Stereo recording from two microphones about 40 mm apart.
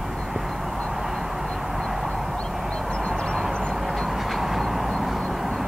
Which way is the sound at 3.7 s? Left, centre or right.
Centre.